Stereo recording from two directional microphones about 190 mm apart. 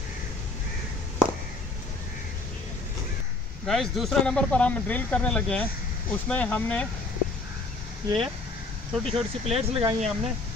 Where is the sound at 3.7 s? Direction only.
Centre (ahead or behind).